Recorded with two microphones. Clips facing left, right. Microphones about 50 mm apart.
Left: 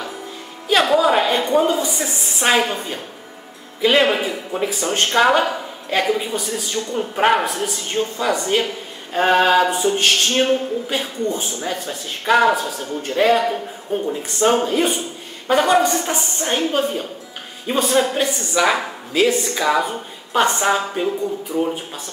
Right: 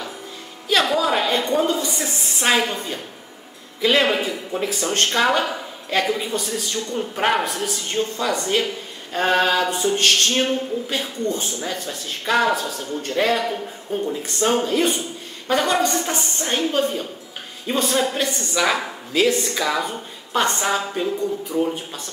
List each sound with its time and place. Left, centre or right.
0.7 s speech: centre